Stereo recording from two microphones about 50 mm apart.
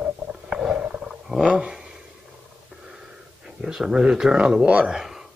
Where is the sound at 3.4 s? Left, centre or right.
Centre.